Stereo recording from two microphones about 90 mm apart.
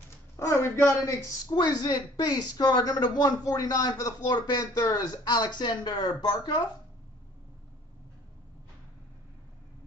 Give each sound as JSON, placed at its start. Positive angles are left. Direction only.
{"t": 0.4, "sound": "speech", "side_deg": 30}
{"t": 1.5, "sound": "speech", "side_deg": 50}